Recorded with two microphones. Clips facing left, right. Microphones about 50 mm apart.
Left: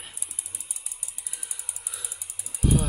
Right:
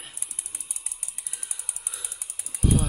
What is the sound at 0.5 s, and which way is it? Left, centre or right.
Ratchet, right.